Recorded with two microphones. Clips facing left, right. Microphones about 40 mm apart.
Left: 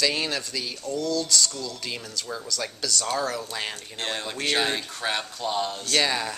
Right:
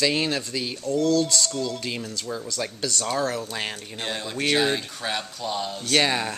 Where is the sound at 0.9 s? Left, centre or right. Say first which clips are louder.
Right 5 dB; right.